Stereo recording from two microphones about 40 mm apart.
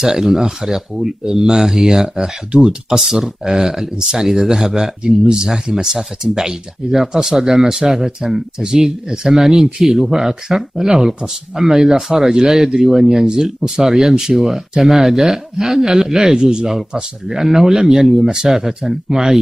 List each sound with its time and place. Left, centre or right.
0.2 s speech: centre
2.1 s speech: right